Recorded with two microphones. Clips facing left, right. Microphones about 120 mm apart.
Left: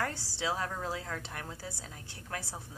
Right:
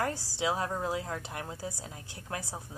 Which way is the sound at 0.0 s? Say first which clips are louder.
Right 3 dB; 15° right (ahead or behind).